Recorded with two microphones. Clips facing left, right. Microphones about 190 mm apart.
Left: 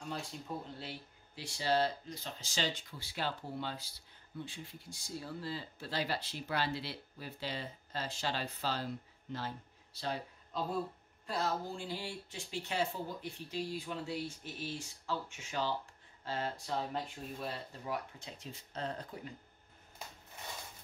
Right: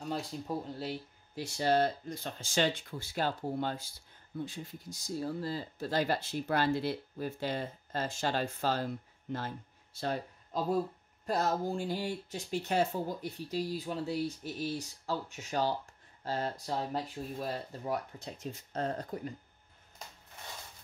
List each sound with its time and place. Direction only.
0.7 s speech: 45° right (ahead or behind)